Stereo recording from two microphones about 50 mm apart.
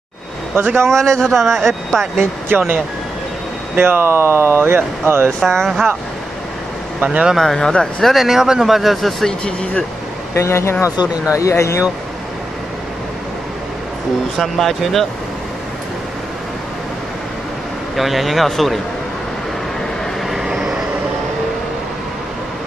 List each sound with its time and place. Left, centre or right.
0.8 s speech: centre
2.1 s speech: right
3.7 s speech: right
5.4 s speech: centre
7.0 s speech: centre
7.5 s speech: centre
8.1 s speech: centre
10.3 s speech: left
14.4 s speech: centre
17.9 s speech: centre
20.4 s vehicle: centre